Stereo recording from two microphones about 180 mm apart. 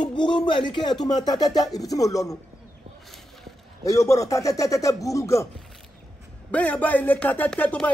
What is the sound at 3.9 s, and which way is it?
Speech, 20° left (ahead or behind).